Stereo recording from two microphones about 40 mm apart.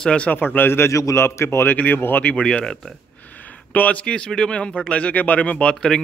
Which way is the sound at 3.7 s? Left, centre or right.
Left.